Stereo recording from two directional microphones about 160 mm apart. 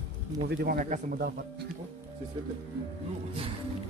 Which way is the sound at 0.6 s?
65° right (ahead or behind).